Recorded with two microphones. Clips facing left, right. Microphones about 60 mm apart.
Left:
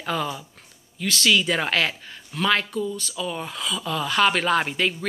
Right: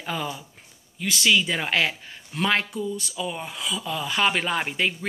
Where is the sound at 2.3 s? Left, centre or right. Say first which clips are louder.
Left 2 dB; right.